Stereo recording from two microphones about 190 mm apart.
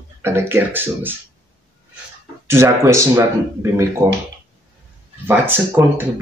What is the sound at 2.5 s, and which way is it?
Speech, 15° right (ahead or behind).